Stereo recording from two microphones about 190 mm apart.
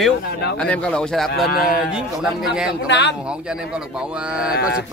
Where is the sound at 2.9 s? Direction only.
65° left (ahead or behind).